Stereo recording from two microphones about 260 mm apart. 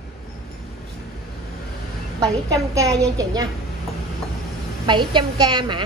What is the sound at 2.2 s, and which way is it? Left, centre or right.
A woman's voice, centre.